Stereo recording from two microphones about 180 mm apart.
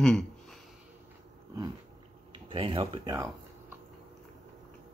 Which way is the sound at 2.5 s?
30° right (ahead or behind).